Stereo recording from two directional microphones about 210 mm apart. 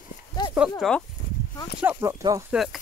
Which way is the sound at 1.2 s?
45° left (ahead or behind).